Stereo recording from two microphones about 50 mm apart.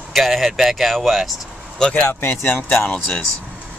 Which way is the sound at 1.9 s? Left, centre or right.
Left.